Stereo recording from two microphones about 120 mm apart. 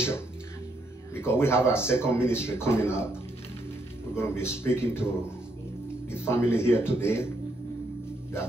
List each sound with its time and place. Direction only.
1.1 s speech: 20° left (ahead or behind)
4.1 s speech: 20° left (ahead or behind)